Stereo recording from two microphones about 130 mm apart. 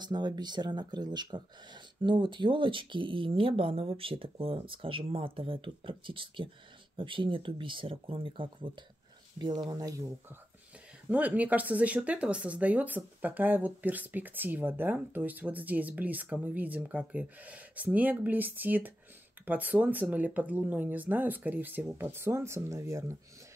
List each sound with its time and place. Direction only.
0.0 s speech: 35° right (ahead or behind)
11.1 s speech: 10° right (ahead or behind)